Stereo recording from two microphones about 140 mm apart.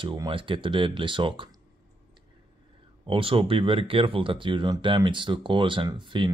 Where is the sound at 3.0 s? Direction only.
40° right (ahead or behind).